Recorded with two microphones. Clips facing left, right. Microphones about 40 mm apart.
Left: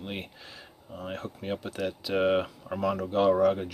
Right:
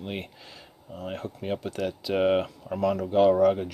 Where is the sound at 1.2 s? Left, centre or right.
Centre.